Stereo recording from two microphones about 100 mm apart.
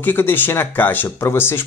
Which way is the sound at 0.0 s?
20° left (ahead or behind).